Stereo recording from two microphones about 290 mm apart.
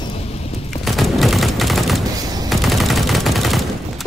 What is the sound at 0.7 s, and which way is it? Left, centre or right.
Fusillade, centre.